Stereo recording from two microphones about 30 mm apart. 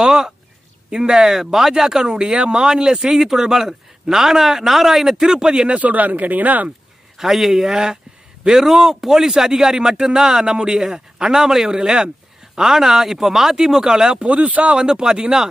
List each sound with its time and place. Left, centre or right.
0.0 s a sound: centre
0.8 s speech: right
1.3 s a man's voice: centre
5.1 s speech: right
5.8 s speech: right
7.2 s a man's voice: centre
7.6 s a man's voice: right
10.5 s a man's voice: right
11.7 s speech: right
12.5 s a man's voice: centre
14.2 s speech: right
14.8 s speech: right